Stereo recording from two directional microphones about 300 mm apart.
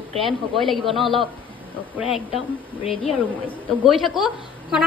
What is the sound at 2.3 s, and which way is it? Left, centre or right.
Speech, centre.